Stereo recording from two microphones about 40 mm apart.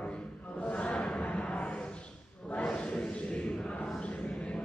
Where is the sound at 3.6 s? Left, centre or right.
Centre.